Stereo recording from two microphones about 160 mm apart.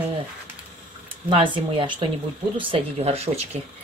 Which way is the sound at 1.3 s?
30° right (ahead or behind).